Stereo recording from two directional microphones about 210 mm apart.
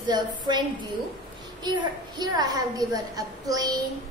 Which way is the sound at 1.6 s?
20° right (ahead or behind).